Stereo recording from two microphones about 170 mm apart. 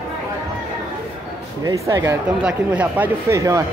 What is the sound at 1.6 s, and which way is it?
Speech, 20° right (ahead or behind).